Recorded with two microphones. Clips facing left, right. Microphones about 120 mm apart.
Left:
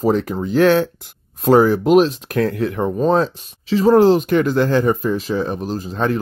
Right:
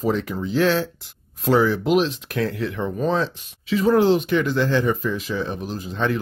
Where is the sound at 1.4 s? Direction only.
45° left (ahead or behind).